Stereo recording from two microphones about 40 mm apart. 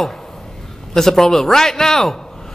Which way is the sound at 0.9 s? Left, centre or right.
Centre.